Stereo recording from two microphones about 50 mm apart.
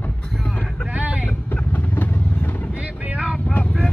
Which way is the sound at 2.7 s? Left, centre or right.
Right.